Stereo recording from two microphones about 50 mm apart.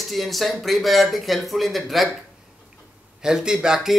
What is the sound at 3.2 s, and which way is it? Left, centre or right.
Speech, centre.